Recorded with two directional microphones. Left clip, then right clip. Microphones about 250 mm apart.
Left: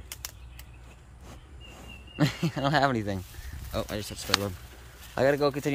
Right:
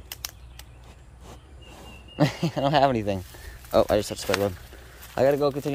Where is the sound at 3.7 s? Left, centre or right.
Centre.